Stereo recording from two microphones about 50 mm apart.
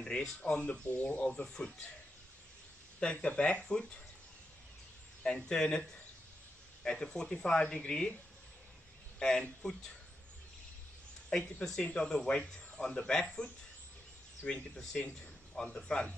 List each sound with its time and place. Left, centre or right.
0.0 s speech: centre
1.3 s a man's voice: centre
3.0 s speech: centre
5.2 s a man's voice: centre
9.2 s a man's voice: centre
11.6 s a man's voice: centre
14.8 s a man's voice: centre